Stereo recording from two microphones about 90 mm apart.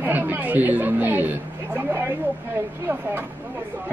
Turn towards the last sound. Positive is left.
turn(degrees=-25)  # may be behind; listen again after turning